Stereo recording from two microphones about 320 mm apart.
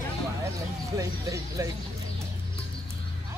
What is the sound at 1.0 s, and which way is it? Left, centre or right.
Speech, centre.